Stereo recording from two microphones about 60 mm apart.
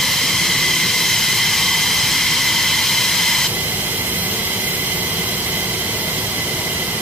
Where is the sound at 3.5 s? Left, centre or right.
Right.